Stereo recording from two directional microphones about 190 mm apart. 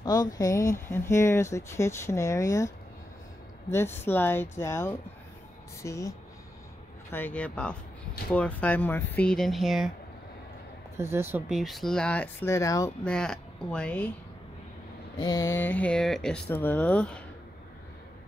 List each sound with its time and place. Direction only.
0.0 s speech: 20° left (ahead or behind)
3.7 s speech: 10° left (ahead or behind)
11.0 s speech: 10° right (ahead or behind); by 12.9 s 15° left (ahead or behind)
13.0 s speech: 5° left (ahead or behind)
15.1 s speech: 20° left (ahead or behind)